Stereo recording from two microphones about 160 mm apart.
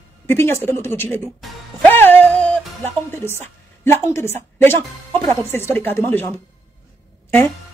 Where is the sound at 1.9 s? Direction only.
10° left (ahead or behind).